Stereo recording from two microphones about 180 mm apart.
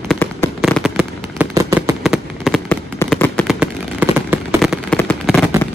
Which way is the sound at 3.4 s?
5° right (ahead or behind).